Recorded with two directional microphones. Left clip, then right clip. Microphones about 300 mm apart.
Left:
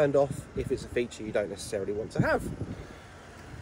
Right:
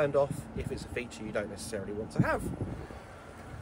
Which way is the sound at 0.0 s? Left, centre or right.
Left.